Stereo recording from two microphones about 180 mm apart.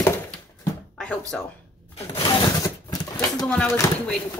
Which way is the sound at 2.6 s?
20° left (ahead or behind).